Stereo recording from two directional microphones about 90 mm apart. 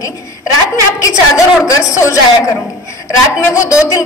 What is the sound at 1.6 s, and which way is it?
A woman's voice, 35° left (ahead or behind).